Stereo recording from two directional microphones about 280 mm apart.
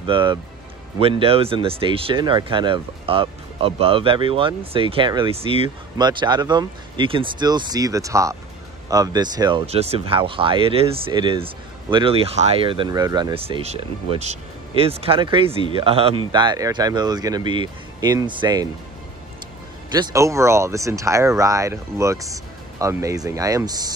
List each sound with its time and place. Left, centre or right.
0.0 s speech: centre
20.0 s speech: centre